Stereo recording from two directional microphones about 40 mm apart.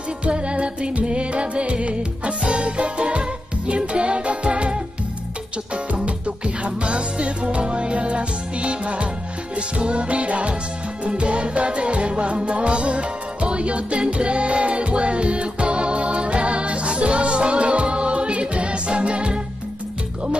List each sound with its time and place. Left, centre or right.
0.2 s music: right
6.0 s music: right